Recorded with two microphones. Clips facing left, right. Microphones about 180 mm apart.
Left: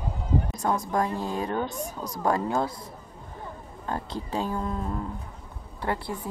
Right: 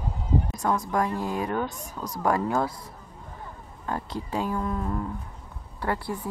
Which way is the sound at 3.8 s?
30° left (ahead or behind).